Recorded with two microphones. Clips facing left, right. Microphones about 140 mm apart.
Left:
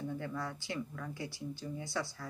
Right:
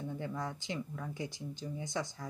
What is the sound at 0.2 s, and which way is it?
Speech, 20° right (ahead or behind).